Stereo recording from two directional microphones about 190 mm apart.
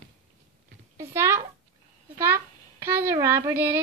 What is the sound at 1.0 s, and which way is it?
Speech, 15° right (ahead or behind).